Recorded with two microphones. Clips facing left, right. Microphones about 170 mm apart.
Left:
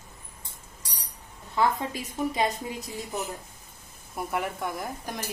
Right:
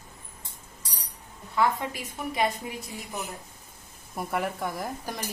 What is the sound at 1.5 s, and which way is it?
A woman's voice, 20° left (ahead or behind).